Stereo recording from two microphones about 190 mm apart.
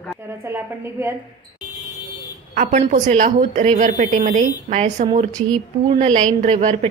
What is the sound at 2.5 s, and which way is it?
A woman's voice, 45° right (ahead or behind).